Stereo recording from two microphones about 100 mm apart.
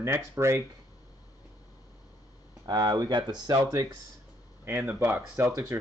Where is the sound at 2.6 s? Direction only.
45° right (ahead or behind).